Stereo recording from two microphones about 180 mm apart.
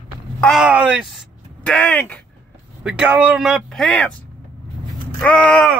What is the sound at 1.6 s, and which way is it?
Speech, 5° left (ahead or behind).